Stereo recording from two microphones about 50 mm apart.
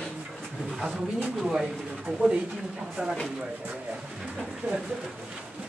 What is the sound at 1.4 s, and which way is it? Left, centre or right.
Speech, centre.